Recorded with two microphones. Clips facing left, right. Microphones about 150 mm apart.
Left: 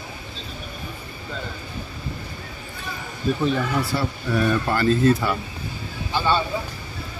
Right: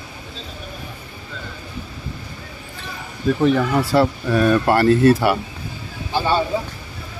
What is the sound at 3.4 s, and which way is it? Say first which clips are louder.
Speech: right 7 dB; 80° right.